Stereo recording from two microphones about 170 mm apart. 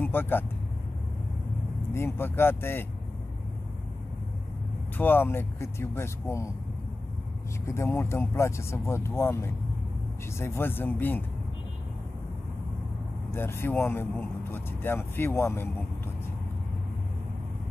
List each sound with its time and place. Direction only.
0.0 s speech: 10° left (ahead or behind)
2.0 s speech: 15° left (ahead or behind)
4.9 s speech: 10° left (ahead or behind)
7.6 s speech: 15° left (ahead or behind)
13.3 s speech: 15° left (ahead or behind)